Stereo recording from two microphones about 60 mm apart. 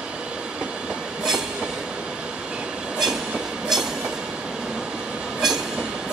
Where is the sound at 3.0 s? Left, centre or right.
Centre.